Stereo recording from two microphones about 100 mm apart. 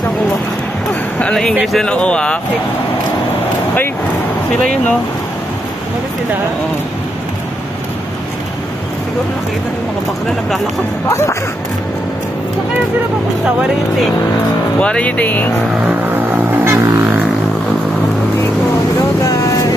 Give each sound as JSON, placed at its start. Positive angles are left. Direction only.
{"t": 1.2, "sound": "speech", "side_deg": 5}
{"t": 11.1, "sound": "speech", "side_deg": 30}
{"t": 14.8, "sound": "speech", "side_deg": 10}
{"t": 15.9, "sound": "vehicle", "side_deg": -20}
{"t": 19.2, "sound": "vehicle", "side_deg": 35}